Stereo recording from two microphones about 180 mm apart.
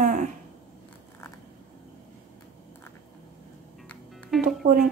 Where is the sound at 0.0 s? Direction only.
45° right (ahead or behind).